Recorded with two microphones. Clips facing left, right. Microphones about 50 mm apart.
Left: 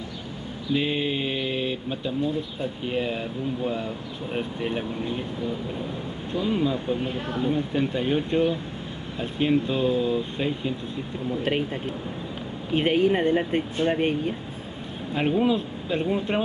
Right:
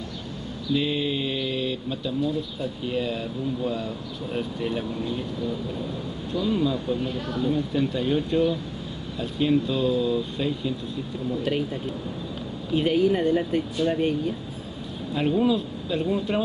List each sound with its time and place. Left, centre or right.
0.7 s speech: left